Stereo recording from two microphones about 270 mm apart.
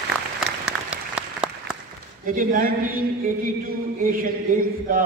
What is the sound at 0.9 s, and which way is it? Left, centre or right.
Applause, centre.